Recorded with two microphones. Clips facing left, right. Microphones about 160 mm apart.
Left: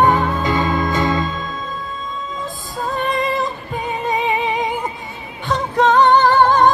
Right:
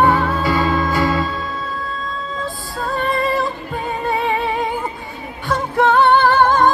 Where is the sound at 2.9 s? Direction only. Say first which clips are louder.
Right 1 dB; 20° left (ahead or behind).